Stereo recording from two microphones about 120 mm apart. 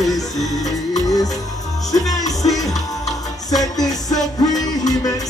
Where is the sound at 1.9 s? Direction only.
30° left (ahead or behind).